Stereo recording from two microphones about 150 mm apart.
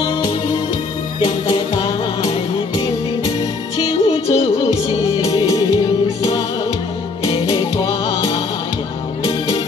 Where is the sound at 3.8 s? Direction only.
40° left (ahead or behind).